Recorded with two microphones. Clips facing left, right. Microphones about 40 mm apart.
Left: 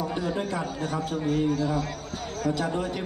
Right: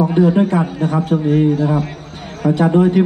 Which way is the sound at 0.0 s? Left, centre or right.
Right.